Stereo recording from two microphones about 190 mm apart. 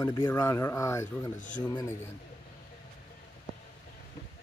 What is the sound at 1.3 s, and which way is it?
Speech, 40° left (ahead or behind).